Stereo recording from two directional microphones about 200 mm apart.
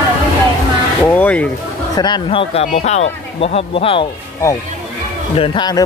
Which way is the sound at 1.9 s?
20° left (ahead or behind).